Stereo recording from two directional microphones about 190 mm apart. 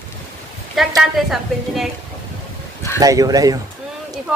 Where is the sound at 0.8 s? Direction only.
Centre (ahead or behind).